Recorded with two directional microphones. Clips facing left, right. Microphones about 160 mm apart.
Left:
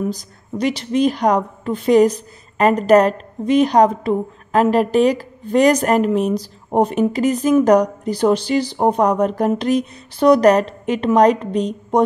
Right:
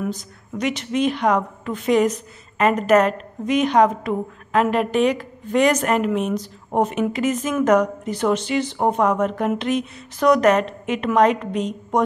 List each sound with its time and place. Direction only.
0.0 s a woman's voice: 35° left (ahead or behind)